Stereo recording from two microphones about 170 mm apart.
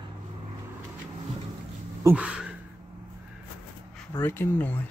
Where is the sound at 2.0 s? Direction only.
5° right (ahead or behind).